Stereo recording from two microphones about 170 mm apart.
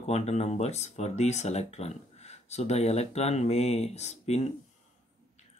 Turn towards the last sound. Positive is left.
turn(degrees=40)  # may be behind; listen again after turning